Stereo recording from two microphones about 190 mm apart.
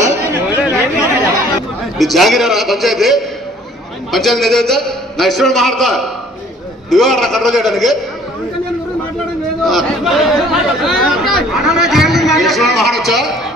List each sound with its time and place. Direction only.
0.0 s chatter: 15° right (ahead or behind)
2.0 s speech: centre (ahead or behind)
9.6 s speech: centre (ahead or behind)